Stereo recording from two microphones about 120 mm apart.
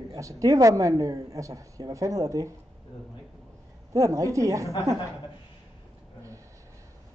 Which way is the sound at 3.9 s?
25° right (ahead or behind).